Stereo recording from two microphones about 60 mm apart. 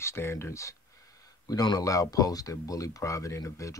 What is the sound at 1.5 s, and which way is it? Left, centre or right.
Speech, left.